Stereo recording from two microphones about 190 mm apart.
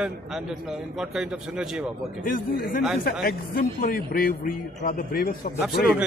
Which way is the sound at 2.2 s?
45° left (ahead or behind).